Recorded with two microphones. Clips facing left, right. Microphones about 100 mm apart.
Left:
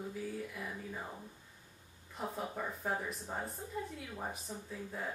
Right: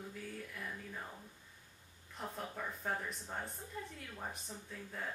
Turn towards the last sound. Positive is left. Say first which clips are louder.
# left 3 dB
turn(degrees=10)  # may be behind; listen again after turning